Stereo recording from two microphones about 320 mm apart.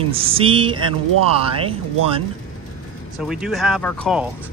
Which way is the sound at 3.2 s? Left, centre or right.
Centre.